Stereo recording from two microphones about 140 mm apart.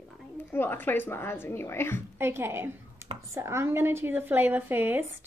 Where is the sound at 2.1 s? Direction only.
15° right (ahead or behind).